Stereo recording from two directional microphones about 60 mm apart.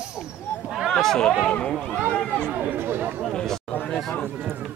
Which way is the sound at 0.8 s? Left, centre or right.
Centre.